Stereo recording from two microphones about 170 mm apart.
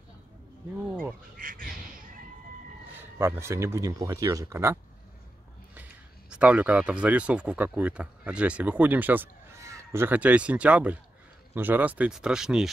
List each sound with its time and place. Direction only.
0.8 s speech: 10° right (ahead or behind)
1.3 s bird: 55° right (ahead or behind)
2.9 s speech: 15° right (ahead or behind)
6.3 s speech: 5° right (ahead or behind)